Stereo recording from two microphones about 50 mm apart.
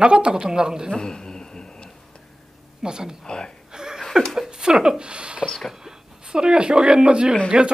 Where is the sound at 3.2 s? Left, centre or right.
Centre.